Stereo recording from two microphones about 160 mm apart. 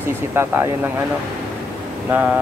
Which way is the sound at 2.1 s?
10° right (ahead or behind).